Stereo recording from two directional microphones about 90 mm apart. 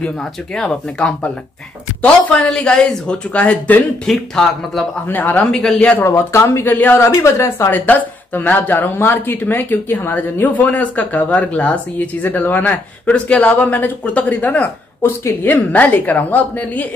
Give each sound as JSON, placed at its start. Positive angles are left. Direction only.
{"t": 0.6, "sound": "speech", "side_deg": 10}
{"t": 2.3, "sound": "speech", "side_deg": 10}
{"t": 4.1, "sound": "speech", "side_deg": 5}
{"t": 5.0, "sound": "speech", "side_deg": 20}
{"t": 6.0, "sound": "speech", "side_deg": 30}
{"t": 7.8, "sound": "speech", "side_deg": 20}